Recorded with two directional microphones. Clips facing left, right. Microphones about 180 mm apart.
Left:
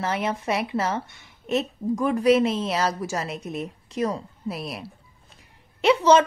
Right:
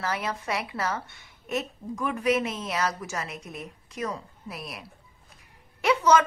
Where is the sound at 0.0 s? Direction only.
25° left (ahead or behind).